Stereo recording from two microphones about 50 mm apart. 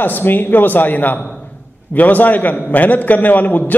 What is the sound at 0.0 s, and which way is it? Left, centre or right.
A man's voice, left.